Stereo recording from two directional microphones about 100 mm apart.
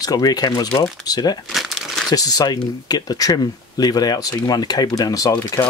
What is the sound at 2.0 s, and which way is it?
Speech, 40° left (ahead or behind).